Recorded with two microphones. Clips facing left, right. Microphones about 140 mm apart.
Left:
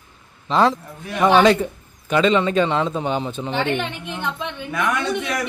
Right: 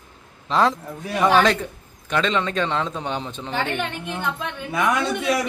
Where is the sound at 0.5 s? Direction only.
Centre (ahead or behind).